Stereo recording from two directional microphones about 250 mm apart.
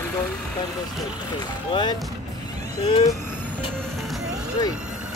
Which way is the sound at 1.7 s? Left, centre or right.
Centre.